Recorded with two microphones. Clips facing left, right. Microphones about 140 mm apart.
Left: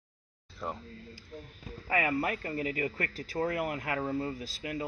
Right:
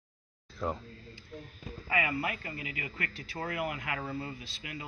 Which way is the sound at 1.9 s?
45° left (ahead or behind).